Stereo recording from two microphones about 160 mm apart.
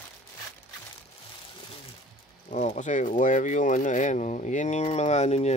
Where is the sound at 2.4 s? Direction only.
50° left (ahead or behind).